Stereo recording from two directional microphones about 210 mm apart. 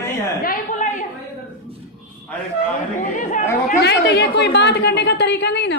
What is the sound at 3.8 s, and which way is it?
A woman's voice, 55° left (ahead or behind).